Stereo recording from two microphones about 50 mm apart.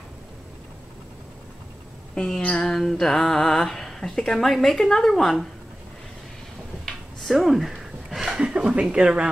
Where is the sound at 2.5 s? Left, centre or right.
Centre.